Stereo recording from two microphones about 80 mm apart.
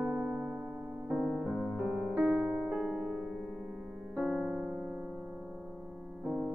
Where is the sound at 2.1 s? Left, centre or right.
Centre.